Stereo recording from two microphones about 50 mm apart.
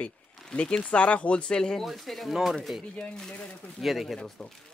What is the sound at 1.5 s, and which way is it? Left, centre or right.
Speech, centre.